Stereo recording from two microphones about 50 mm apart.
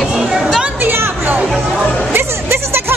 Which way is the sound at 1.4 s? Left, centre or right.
Centre.